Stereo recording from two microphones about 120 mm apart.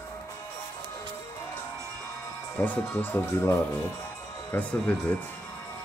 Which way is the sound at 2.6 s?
15° left (ahead or behind).